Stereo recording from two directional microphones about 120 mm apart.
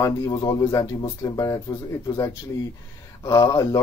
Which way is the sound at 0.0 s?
30° left (ahead or behind).